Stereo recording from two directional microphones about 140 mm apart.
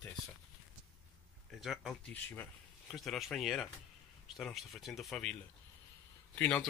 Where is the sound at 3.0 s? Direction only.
Centre (ahead or behind).